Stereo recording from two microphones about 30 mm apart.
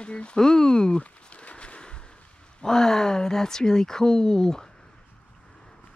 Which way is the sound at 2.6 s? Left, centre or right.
Centre.